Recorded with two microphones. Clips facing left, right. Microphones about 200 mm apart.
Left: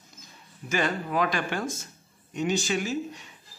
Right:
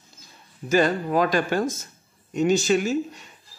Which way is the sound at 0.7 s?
40° right (ahead or behind).